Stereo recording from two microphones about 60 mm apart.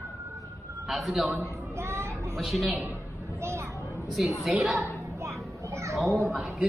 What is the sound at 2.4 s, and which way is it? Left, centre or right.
Speech, centre.